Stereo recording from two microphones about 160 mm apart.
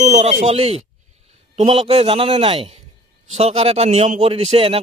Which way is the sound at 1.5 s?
35° right (ahead or behind).